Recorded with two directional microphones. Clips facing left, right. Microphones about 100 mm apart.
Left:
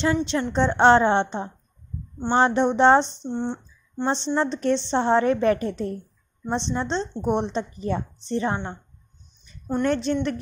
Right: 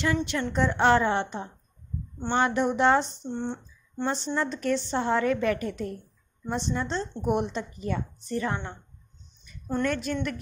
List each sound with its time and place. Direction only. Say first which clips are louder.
0.0 s a woman's voice: left 4 dB; 25° left (ahead or behind)
3.3 s speech: left 4 dB; 15° left (ahead or behind)
4.0 s a woman's voice: left 5 dB; 30° left (ahead or behind)